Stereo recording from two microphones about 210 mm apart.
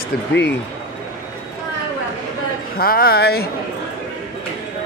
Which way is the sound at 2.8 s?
45° left (ahead or behind).